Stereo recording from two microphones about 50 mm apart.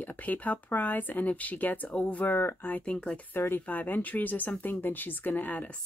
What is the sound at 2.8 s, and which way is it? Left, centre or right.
Speech, left.